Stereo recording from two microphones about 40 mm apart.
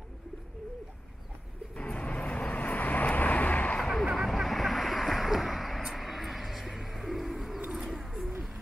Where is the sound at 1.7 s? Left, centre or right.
Left.